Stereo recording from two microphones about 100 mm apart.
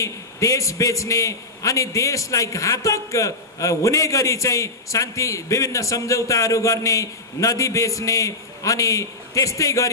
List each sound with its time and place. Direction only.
0.0 s a man's voice: 30° left (ahead or behind)